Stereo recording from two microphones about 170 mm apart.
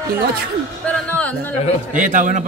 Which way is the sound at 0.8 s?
10° left (ahead or behind).